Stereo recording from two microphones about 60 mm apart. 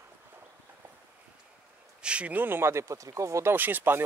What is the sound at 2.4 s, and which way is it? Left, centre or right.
Speech, right.